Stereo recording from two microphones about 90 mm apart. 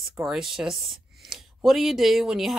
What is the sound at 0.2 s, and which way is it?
Speech, 5° right (ahead or behind).